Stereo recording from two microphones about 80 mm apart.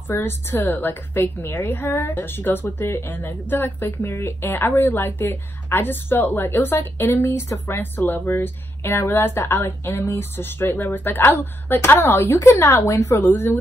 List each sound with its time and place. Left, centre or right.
0.1 s speech: left